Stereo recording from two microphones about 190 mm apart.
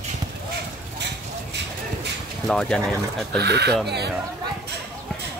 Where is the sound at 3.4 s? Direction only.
60° right (ahead or behind).